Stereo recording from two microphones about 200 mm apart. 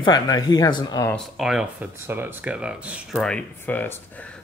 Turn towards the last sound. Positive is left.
turn(degrees=10)  # may be behind; listen again after turning